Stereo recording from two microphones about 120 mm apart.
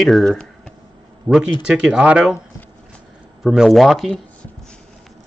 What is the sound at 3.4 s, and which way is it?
Speech, 5° right (ahead or behind).